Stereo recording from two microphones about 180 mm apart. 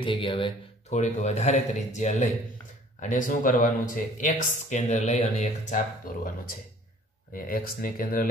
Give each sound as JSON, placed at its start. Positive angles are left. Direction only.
{"t": 0.0, "sound": "a man's voice", "side_deg": 30}
{"t": 7.3, "sound": "speech", "side_deg": 55}